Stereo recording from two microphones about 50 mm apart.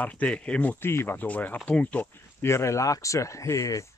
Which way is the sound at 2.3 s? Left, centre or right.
Left.